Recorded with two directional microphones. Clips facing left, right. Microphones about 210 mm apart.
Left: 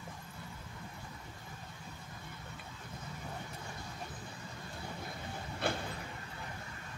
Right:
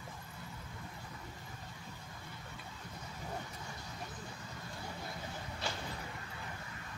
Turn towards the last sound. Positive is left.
turn(degrees=55)  # may be behind; listen again after turning